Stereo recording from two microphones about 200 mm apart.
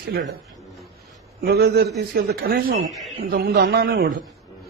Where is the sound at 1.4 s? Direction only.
55° right (ahead or behind).